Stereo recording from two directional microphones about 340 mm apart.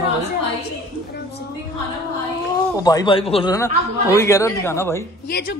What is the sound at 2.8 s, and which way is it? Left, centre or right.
Speech, centre.